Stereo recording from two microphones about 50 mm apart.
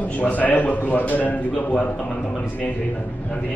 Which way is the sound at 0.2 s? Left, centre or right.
Left.